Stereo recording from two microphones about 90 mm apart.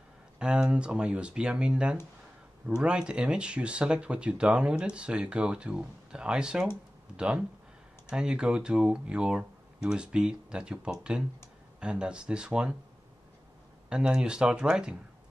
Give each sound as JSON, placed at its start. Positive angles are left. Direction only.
{"t": 0.4, "sound": "speech", "side_deg": -10}
{"t": 13.8, "sound": "speech", "side_deg": -10}